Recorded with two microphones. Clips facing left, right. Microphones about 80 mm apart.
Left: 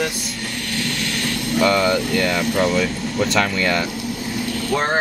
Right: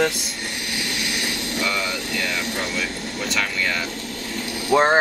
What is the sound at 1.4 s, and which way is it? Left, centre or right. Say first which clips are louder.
Speech: left 11 dB; left.